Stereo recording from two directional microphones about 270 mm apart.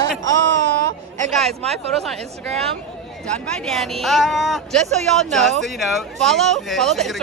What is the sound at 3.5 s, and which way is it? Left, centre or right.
Speech, centre.